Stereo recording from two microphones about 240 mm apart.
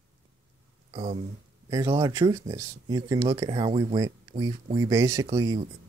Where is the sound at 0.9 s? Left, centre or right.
Right.